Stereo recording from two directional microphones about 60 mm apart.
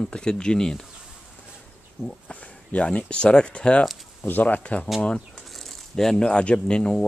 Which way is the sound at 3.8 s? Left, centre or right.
Centre.